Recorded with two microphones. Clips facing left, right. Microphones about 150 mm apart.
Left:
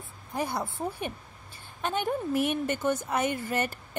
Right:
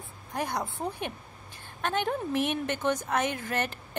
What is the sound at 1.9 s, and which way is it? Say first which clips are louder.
A woman's voice: even; 10° left (ahead or behind).